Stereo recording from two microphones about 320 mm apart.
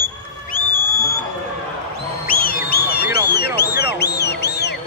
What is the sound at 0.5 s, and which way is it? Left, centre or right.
Music, centre.